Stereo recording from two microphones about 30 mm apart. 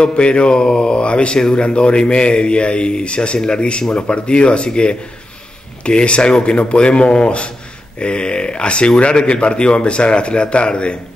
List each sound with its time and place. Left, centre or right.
0.0 s speech: left
5.9 s speech: left